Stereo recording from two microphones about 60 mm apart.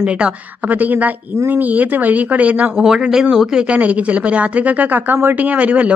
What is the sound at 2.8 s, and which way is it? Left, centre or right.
A woman's voice, centre.